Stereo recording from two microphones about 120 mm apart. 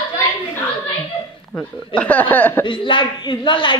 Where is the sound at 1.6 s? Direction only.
10° left (ahead or behind).